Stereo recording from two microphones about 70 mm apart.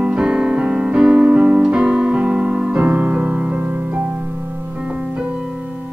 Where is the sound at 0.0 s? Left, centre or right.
Centre.